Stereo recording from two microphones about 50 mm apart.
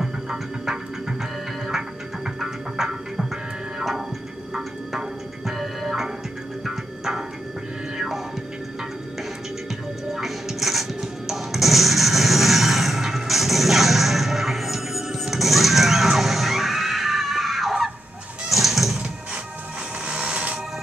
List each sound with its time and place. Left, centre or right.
2.4 s music: centre
4.9 s music: centre
10.1 s music: centre
20.1 s music: centre